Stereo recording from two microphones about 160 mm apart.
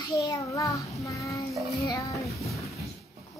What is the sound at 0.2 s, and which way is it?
Child singing, 20° left (ahead or behind).